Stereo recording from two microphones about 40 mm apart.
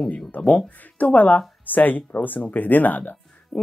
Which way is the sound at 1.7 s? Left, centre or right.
Left.